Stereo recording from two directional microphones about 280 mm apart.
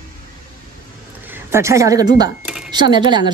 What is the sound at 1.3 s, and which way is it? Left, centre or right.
A woman's voice, centre.